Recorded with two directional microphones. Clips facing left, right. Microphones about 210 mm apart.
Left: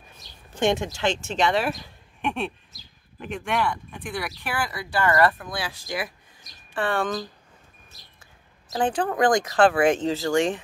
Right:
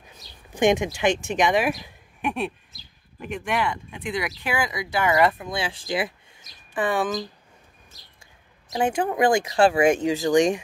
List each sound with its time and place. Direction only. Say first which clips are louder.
0.6 s speech: right 3 dB; 15° right (ahead or behind)
6.7 s speech: right 1 dB; 15° right (ahead or behind)
8.7 s speech: right 1 dB; 10° right (ahead or behind)